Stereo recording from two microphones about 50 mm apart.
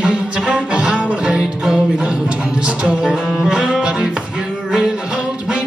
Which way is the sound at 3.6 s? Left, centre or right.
Centre.